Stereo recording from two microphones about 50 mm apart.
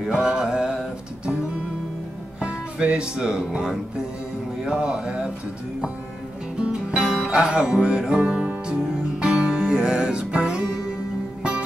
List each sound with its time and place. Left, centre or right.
0.0 s music: centre
2.4 s speech: right
6.6 s music: right
7.0 s music: centre